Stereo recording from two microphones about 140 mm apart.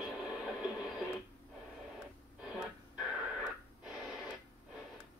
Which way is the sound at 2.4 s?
5° right (ahead or behind).